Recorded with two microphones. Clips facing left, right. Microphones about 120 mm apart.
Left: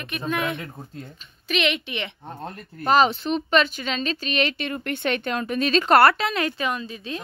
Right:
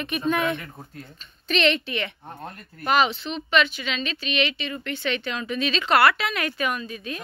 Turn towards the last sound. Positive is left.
turn(degrees=25)  # may be behind; listen again after turning